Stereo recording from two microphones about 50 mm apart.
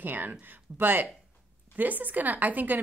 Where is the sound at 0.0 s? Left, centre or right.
Right.